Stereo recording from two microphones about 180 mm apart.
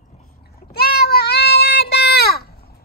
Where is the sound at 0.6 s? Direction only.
60° left (ahead or behind).